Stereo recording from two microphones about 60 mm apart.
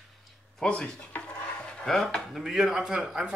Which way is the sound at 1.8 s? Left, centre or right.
Centre.